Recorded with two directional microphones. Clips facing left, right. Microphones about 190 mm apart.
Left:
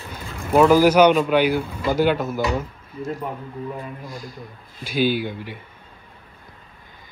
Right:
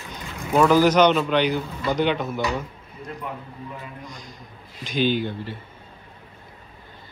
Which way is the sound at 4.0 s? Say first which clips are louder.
Left 5 dB; 5° left (ahead or behind).